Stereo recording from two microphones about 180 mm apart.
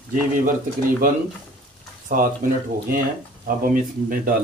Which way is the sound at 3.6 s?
50° right (ahead or behind).